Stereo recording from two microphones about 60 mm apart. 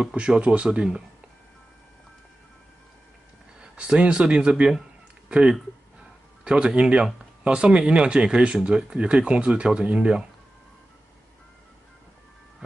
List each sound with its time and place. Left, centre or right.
0.1 s speech: centre
3.7 s speech: centre
6.4 s speech: centre